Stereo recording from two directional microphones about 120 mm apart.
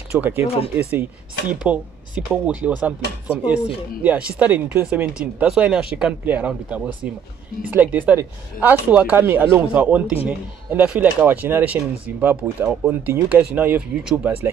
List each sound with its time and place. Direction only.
0.2 s speech: 15° right (ahead or behind)